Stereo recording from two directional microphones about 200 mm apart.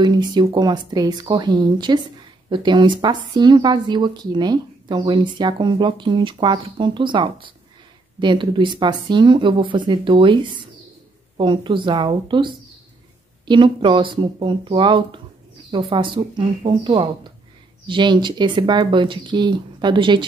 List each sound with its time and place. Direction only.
0.0 s a woman's voice: 20° right (ahead or behind)